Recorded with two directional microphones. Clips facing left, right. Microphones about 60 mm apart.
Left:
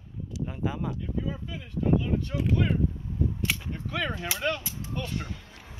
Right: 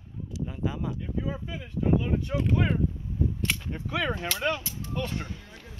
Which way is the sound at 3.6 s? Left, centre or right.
Centre.